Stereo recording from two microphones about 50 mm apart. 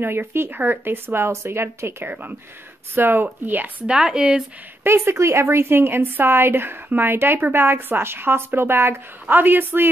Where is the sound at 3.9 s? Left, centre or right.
Centre.